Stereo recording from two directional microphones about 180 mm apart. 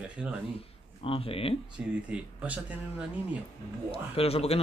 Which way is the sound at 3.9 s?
35° left (ahead or behind).